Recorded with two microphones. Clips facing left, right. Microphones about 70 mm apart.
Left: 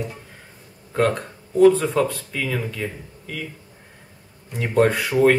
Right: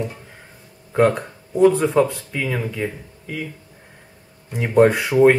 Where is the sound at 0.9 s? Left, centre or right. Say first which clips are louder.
Right 4 dB; centre.